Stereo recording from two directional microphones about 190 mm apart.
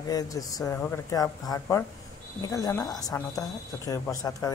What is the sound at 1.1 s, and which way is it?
A woman's voice, 20° left (ahead or behind).